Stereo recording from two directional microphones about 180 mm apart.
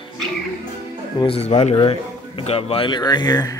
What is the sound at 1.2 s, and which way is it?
A man's voice, 35° left (ahead or behind).